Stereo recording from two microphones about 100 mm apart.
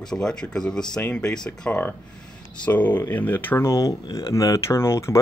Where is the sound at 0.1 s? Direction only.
5° left (ahead or behind).